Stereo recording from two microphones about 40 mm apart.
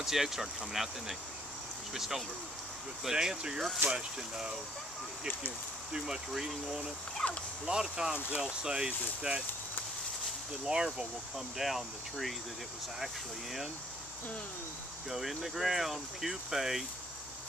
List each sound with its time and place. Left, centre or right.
0.0 s speech: centre
7.2 s a sound: centre
7.6 s speech: centre
10.6 s speech: centre
11.0 s speech: centre
15.0 s speech: centre